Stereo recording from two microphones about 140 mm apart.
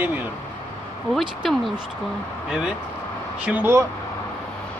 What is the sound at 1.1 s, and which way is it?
Speech, centre (ahead or behind).